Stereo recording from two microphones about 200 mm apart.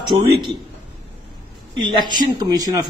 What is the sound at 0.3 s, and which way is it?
Speech, 25° right (ahead or behind).